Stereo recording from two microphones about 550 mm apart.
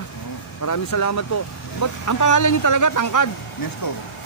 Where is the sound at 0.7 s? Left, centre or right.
Left.